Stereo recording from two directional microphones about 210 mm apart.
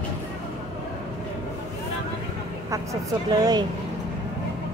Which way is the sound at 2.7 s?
15° right (ahead or behind).